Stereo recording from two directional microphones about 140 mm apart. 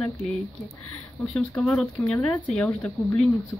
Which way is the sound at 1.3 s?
5° left (ahead or behind).